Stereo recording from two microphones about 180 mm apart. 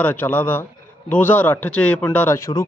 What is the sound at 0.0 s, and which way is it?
A man's voice, 10° left (ahead or behind).